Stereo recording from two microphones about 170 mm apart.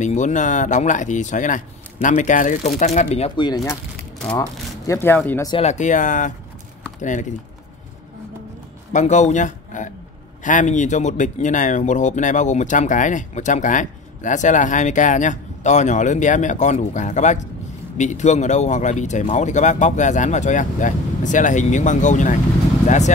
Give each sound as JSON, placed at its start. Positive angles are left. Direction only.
{"t": 0.0, "sound": "speech", "side_deg": 45}
{"t": 5.5, "sound": "speech", "side_deg": 40}
{"t": 8.9, "sound": "speech", "side_deg": 45}